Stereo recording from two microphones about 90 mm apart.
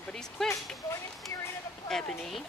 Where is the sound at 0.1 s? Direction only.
5° left (ahead or behind).